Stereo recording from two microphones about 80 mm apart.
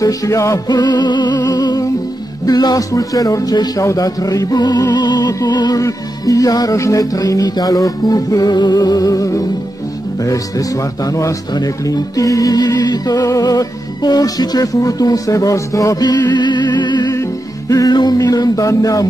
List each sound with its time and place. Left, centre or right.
0.0 s speech: left
0.7 s music: left
2.9 s speech: left
3.8 s music: left
5.8 s speech: left
17.1 s music: left